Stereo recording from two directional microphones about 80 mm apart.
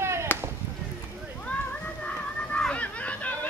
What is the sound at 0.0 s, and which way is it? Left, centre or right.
Chop, right.